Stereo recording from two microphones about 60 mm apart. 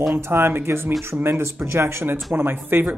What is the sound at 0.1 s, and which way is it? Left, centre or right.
Speech, right.